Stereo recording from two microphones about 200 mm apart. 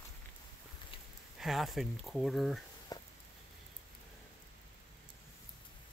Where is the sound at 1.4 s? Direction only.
Centre (ahead or behind).